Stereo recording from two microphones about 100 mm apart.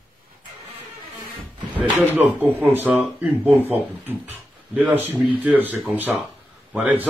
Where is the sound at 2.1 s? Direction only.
20° right (ahead or behind).